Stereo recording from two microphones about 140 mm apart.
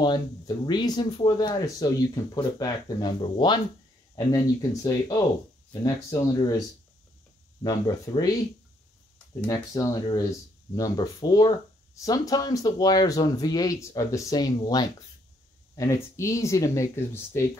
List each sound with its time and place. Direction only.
0.7 s speech: 30° left (ahead or behind)
7.6 s speech: 30° left (ahead or behind)
9.5 s speech: 25° left (ahead or behind)